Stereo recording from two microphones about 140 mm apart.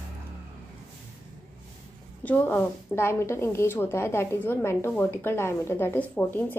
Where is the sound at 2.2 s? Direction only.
10° left (ahead or behind).